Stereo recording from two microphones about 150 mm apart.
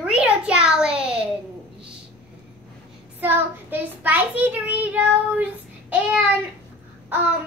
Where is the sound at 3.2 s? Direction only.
10° right (ahead or behind).